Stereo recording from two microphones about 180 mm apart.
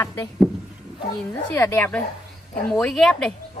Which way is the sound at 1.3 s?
10° left (ahead or behind).